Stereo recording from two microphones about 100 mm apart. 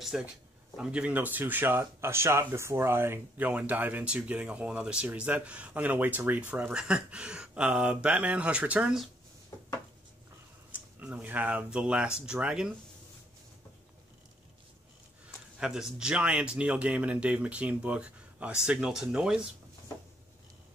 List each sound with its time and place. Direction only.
0.1 s speech: 5° right (ahead or behind)
10.7 s speech: 15° right (ahead or behind)
15.2 s speech: 5° right (ahead or behind)